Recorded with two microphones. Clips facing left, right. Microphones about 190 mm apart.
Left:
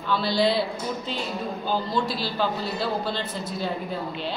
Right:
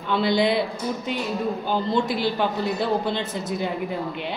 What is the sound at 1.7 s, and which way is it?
A man's voice, 20° right (ahead or behind).